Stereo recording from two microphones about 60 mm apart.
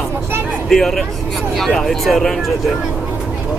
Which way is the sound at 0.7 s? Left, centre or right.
Centre.